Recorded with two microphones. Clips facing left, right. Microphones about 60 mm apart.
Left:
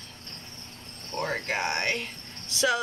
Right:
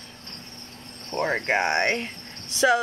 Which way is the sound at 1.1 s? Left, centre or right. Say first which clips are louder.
Right 6 dB; right.